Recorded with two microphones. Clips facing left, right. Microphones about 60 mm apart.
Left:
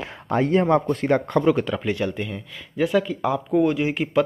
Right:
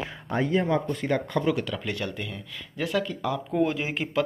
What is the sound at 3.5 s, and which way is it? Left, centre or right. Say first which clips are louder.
Speech: left 6 dB; centre.